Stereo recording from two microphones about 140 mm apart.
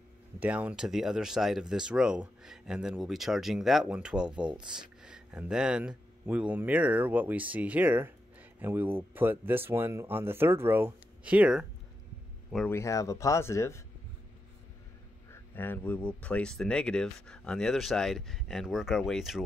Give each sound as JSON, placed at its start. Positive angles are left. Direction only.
{"t": 0.4, "sound": "speech", "side_deg": -10}
{"t": 12.6, "sound": "speech", "side_deg": 20}
{"t": 15.3, "sound": "speech", "side_deg": 15}